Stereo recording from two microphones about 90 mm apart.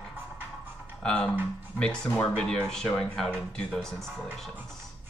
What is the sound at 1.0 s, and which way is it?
Speech, 5° left (ahead or behind).